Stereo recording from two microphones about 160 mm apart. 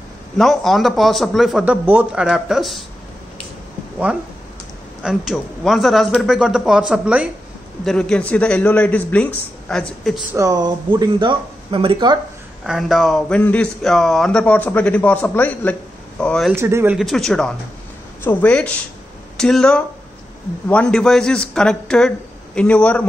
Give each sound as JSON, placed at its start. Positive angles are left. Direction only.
{"t": 0.4, "sound": "a man's voice", "side_deg": 0}
{"t": 5.0, "sound": "a man's voice", "side_deg": 0}
{"t": 7.8, "sound": "a man's voice", "side_deg": 5}
{"t": 10.3, "sound": "speech", "side_deg": -20}
{"t": 12.6, "sound": "a man's voice", "side_deg": 0}
{"t": 16.5, "sound": "speech", "side_deg": -15}
{"t": 16.9, "sound": "a man's voice", "side_deg": 0}